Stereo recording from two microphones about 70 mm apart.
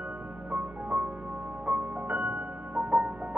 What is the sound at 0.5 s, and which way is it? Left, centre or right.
Music, right.